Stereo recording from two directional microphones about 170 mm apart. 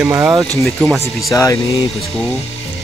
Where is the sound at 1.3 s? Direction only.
20° left (ahead or behind).